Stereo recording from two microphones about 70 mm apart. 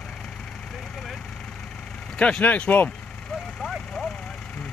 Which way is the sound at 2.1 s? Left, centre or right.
Centre.